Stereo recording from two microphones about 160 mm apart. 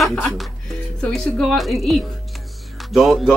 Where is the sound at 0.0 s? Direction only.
Centre (ahead or behind).